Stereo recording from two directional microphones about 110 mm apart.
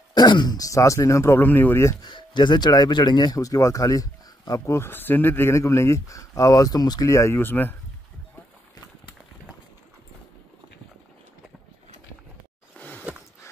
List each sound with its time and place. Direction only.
0.1 s speech: 40° left (ahead or behind); by 2.0 s 25° left (ahead or behind)
2.0 s speech: 45° left (ahead or behind); by 7.7 s 20° left (ahead or behind)
12.7 s a sound: 15° left (ahead or behind)